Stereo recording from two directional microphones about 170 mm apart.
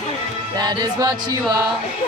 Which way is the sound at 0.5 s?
25° right (ahead or behind).